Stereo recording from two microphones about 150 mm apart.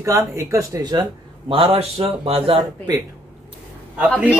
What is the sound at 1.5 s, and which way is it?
A man's voice, 35° right (ahead or behind).